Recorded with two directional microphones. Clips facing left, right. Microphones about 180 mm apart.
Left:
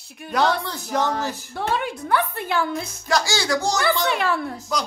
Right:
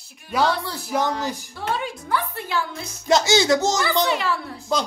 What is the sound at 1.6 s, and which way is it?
A woman's voice, 60° left (ahead or behind).